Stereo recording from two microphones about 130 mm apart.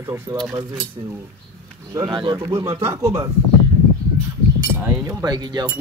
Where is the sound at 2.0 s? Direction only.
40° right (ahead or behind).